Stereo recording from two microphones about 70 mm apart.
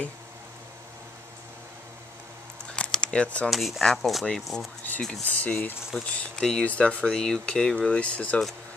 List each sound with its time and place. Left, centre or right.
2.7 s a sound: centre
3.4 s speech: centre
5.2 s speech: left
5.9 s speech: centre
6.6 s speech: left